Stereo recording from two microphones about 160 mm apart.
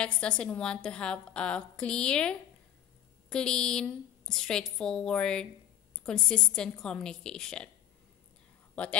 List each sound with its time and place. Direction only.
0.0 s a woman's voice: 5° left (ahead or behind)
8.8 s a woman's voice: 10° left (ahead or behind)